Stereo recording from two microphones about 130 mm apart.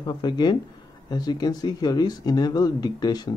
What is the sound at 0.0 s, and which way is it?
Speech, 35° left (ahead or behind).